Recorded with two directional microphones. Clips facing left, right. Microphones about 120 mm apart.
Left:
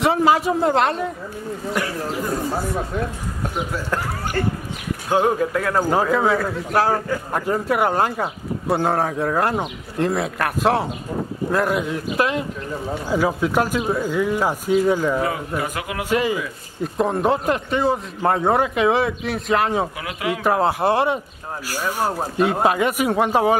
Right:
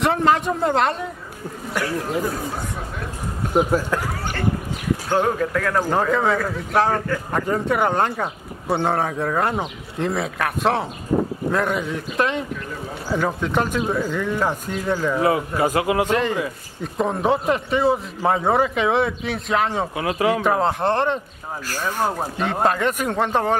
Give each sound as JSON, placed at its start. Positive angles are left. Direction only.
{"t": 0.0, "sound": "a man's voice", "side_deg": 5}
{"t": 5.2, "sound": "a man's voice", "side_deg": 15}
{"t": 15.2, "sound": "a man's voice", "side_deg": -25}
{"t": 16.1, "sound": "a man's voice", "side_deg": 5}
{"t": 20.0, "sound": "speech", "side_deg": -35}
{"t": 20.4, "sound": "speech", "side_deg": 5}